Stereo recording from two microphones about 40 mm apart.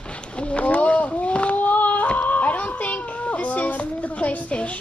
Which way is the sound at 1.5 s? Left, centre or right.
Left.